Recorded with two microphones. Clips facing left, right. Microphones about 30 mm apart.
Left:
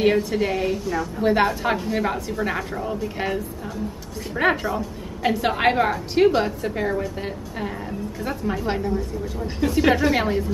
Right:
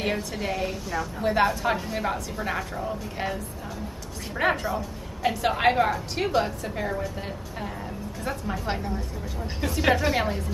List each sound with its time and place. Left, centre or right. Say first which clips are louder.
0.0 s a woman's voice: left 9 dB; centre
1.2 s a woman's voice: left 3 dB; centre
4.4 s a woman's voice: left 4 dB; centre
8.6 s a woman's voice: left 6 dB; centre